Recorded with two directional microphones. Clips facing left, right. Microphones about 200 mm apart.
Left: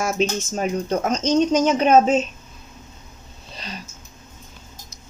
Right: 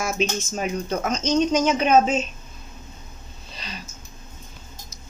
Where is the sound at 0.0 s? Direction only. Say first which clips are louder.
Left 3 dB; 40° left (ahead or behind).